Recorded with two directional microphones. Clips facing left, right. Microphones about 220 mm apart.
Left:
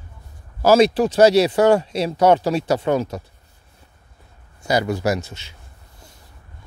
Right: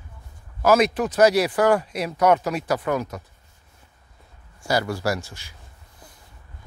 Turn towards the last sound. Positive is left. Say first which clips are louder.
# left 4 dB
turn(degrees=20)  # may be behind; listen again after turning